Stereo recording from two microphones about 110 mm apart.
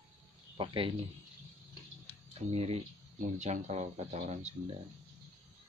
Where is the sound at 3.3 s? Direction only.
90° right.